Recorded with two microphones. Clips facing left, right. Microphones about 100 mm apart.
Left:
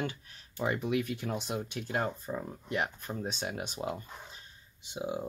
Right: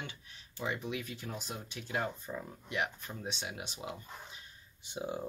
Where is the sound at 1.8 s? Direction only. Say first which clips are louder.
Even; 40° left (ahead or behind).